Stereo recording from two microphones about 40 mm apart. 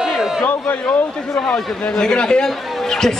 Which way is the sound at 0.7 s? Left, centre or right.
Left.